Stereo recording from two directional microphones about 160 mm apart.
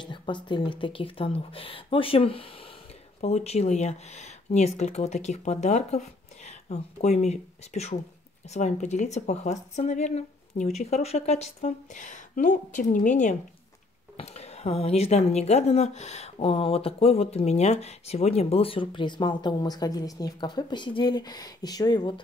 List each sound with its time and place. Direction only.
0.0 s a woman's voice: 30° left (ahead or behind)